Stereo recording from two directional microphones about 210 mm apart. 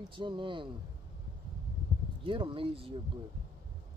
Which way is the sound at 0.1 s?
25° right (ahead or behind).